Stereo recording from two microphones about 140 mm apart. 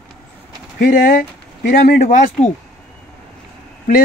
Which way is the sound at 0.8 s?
90° left.